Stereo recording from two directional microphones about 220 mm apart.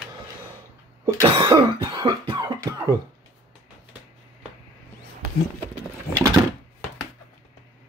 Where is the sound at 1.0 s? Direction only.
15° right (ahead or behind).